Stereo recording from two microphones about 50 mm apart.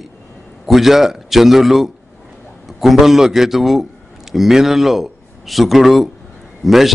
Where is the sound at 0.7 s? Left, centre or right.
Centre.